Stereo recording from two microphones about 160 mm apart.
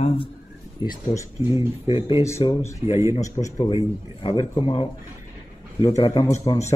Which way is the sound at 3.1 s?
20° left (ahead or behind).